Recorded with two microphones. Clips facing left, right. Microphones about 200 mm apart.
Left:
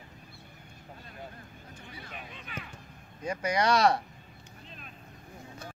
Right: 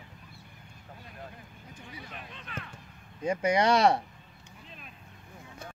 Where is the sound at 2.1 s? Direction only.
5° left (ahead or behind).